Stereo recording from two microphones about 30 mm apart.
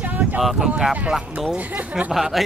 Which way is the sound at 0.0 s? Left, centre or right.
Right.